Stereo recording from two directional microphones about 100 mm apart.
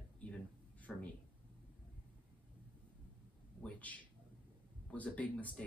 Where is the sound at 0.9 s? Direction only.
Centre (ahead or behind).